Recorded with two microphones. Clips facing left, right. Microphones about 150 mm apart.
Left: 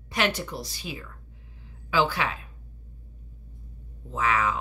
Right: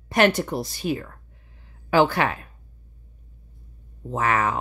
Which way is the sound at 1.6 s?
55° right (ahead or behind).